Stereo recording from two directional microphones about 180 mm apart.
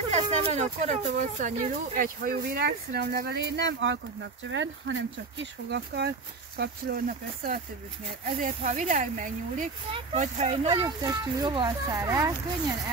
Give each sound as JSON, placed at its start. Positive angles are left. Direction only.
{"t": 0.1, "sound": "speech", "side_deg": -40}
{"t": 6.6, "sound": "speech", "side_deg": -55}
{"t": 10.8, "sound": "speech", "side_deg": -25}